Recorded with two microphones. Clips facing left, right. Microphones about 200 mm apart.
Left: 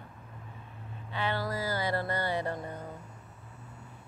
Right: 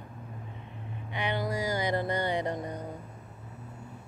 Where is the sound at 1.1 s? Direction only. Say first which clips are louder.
Right 1 dB; 15° right (ahead or behind).